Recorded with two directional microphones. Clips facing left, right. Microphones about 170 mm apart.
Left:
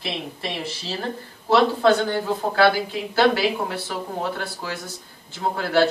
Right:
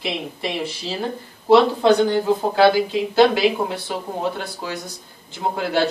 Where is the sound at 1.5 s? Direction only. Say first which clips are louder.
Right 3 dB; 15° right (ahead or behind).